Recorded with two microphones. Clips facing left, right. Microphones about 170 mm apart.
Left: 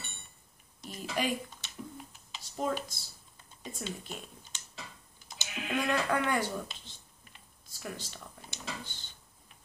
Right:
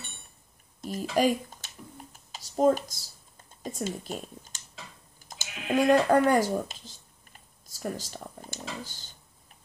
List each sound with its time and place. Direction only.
0.7 s a sound: 45° right (ahead or behind)
1.1 s speech: 40° right (ahead or behind)
2.1 s computer keyboard: 45° right (ahead or behind)
3.6 s speech: 45° right (ahead or behind)
5.3 s sheep: 45° right (ahead or behind)
5.7 s speech: 40° right (ahead or behind)